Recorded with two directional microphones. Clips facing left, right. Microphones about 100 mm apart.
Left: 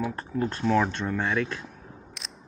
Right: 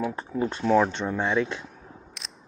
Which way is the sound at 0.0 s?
5° right (ahead or behind).